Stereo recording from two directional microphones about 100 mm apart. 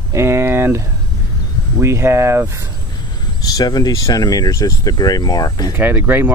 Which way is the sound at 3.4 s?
40° left (ahead or behind).